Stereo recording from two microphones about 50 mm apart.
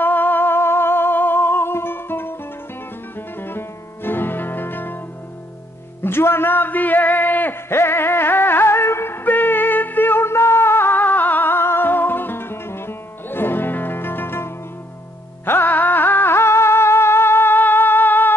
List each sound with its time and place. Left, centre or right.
0.0 s music: left
6.0 s a sound: left
7.7 s music: left
11.0 s music: left